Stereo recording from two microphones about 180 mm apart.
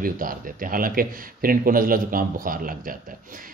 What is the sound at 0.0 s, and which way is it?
A man's voice, 50° right (ahead or behind).